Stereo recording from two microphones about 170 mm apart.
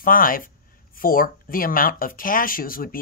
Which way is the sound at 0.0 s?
55° left (ahead or behind).